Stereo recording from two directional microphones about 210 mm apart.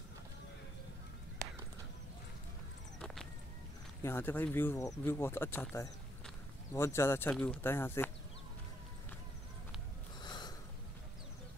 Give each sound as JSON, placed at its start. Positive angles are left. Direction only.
{"t": 4.0, "sound": "speech", "side_deg": 10}
{"t": 10.2, "sound": "snort", "side_deg": 20}